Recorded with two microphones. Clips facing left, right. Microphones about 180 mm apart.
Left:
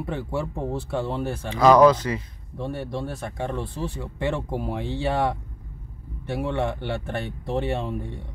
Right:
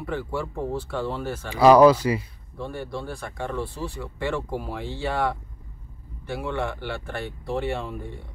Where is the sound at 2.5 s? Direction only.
20° left (ahead or behind).